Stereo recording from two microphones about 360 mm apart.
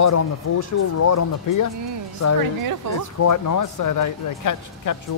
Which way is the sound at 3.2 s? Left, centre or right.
Left.